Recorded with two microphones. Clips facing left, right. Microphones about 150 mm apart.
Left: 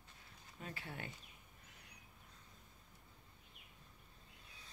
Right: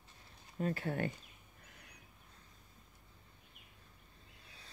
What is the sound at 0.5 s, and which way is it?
Speech, 50° right (ahead or behind).